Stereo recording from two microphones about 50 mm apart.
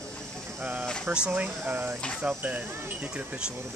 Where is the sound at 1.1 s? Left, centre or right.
Right.